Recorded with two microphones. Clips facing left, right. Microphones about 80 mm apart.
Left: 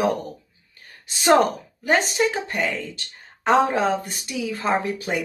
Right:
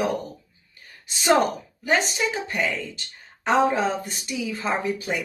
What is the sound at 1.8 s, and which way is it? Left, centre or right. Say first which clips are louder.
Speech: left 3 dB; left.